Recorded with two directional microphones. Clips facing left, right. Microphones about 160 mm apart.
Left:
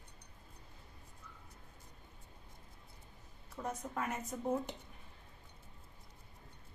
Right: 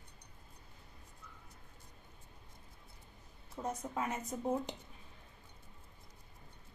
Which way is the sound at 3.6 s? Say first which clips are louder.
Right 2 dB; 20° right (ahead or behind).